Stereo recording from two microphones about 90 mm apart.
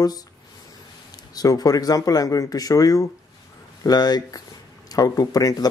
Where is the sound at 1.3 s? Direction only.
45° left (ahead or behind).